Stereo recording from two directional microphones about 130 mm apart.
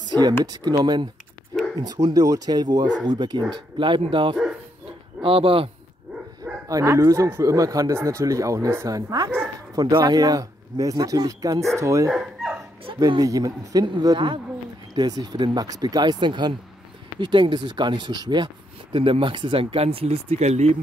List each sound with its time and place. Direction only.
0.0 s a sound: 35° right (ahead or behind)
0.5 s speech: 30° right (ahead or behind)
6.7 s speech: 25° right (ahead or behind)
12.1 s dog: centre (ahead or behind)
13.0 s speech: 30° right (ahead or behind); by 20.7 s 60° right (ahead or behind)